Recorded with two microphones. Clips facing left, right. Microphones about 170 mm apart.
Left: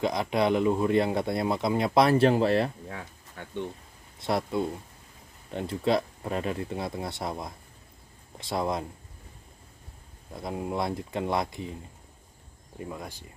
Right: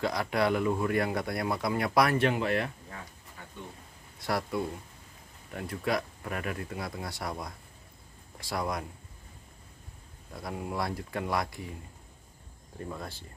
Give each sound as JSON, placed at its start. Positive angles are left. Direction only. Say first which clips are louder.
{"t": 0.0, "sound": "speech", "louder": "left 3 dB", "side_deg": 20}
{"t": 2.9, "sound": "a sound", "louder": "left 5 dB", "side_deg": 80}
{"t": 4.2, "sound": "speech", "louder": "left 3 dB", "side_deg": 25}
{"t": 10.3, "sound": "speech", "louder": "left 4 dB", "side_deg": 25}
{"t": 12.7, "sound": "speech", "louder": "left 1 dB", "side_deg": 15}